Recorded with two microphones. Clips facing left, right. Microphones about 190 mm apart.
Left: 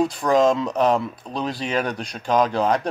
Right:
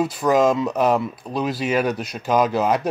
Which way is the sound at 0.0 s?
5° right (ahead or behind).